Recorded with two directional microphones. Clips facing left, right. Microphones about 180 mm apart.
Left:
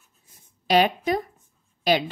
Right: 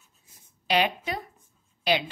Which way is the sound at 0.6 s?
45° left (ahead or behind).